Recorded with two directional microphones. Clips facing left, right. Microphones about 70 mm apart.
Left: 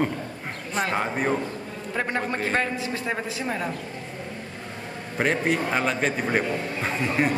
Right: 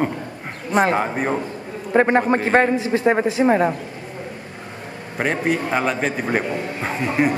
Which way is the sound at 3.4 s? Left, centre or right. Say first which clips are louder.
Right 14 dB; right.